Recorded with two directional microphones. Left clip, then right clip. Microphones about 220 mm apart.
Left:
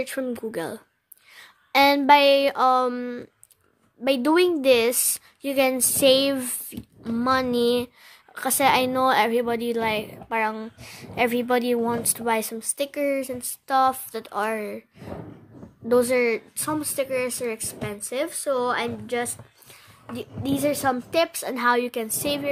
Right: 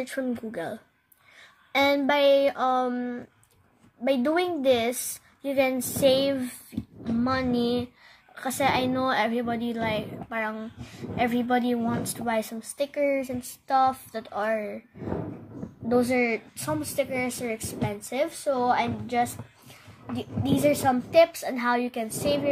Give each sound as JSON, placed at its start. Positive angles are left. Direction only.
{"t": 0.0, "sound": "a woman's voice", "side_deg": 35}
{"t": 15.9, "sound": "a woman's voice", "side_deg": 50}